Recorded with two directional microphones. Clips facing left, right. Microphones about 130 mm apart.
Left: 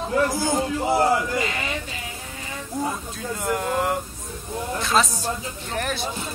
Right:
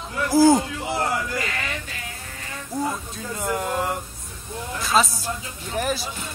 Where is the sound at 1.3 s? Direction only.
20° left (ahead or behind).